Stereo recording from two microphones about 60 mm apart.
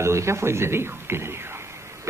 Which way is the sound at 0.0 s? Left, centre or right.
Right.